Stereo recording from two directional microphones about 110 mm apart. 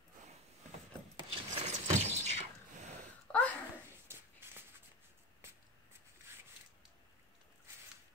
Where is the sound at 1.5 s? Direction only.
85° right.